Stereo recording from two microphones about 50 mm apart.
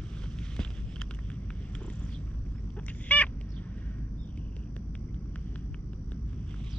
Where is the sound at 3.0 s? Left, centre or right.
Left.